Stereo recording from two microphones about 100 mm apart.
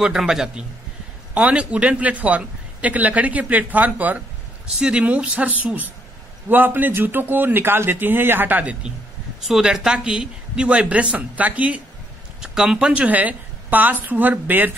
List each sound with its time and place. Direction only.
0.0 s a man's voice: 5° right (ahead or behind)
9.4 s a man's voice: 5° right (ahead or behind)